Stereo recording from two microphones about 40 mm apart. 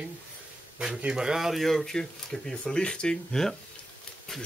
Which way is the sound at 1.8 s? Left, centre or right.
Centre.